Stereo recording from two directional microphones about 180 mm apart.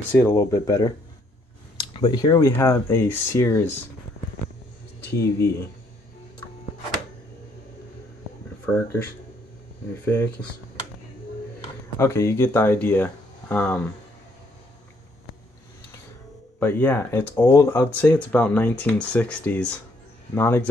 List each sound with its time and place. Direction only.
0.1 s speech: 15° left (ahead or behind)
5.1 s speech: 15° left (ahead or behind)
8.7 s speech: 15° left (ahead or behind)
10.0 s speech: 15° left (ahead or behind)
12.0 s speech: 15° left (ahead or behind)
16.5 s speech: 10° left (ahead or behind)